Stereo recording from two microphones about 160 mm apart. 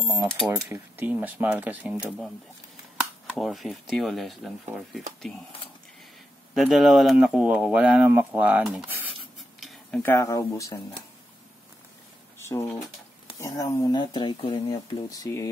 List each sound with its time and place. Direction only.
0.5 s speech: 10° right (ahead or behind)
6.5 s speech: centre (ahead or behind); by 10.8 s 20° left (ahead or behind)
12.4 s speech: 15° left (ahead or behind)
13.9 s speech: 30° left (ahead or behind)